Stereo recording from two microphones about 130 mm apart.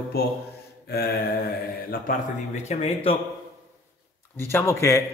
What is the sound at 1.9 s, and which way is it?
Speech, 90° left.